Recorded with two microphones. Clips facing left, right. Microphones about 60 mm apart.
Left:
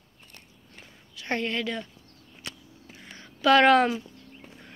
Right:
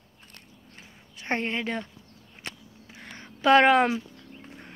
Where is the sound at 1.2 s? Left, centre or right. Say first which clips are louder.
Even; right.